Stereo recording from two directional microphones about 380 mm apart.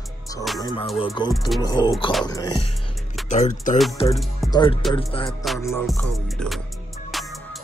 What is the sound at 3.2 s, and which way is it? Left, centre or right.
Speech, centre.